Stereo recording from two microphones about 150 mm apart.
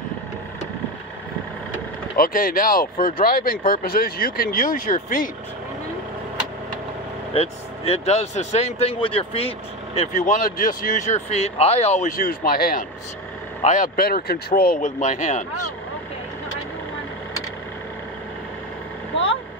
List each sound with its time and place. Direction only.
2.1 s speech: 75° left (ahead or behind)
7.3 s speech: 45° left (ahead or behind)
9.9 s speech: 55° left (ahead or behind)
12.1 s speech: 75° left (ahead or behind)
13.6 s speech: 50° left (ahead or behind)
13.9 s speech: 90° left; by 15.4 s 50° left (ahead or behind)